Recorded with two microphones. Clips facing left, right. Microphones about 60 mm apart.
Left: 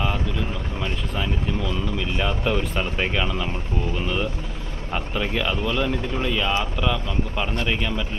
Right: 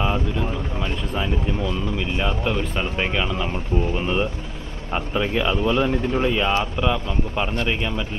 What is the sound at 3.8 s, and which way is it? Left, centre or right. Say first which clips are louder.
Speech: right 2 dB; right.